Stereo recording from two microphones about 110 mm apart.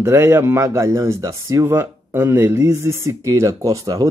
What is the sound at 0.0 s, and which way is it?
Speech, 20° right (ahead or behind).